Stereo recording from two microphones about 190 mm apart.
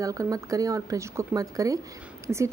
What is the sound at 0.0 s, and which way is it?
A woman's voice, 20° right (ahead or behind).